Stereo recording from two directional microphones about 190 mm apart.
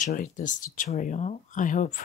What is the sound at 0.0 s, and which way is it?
Speech, 45° left (ahead or behind).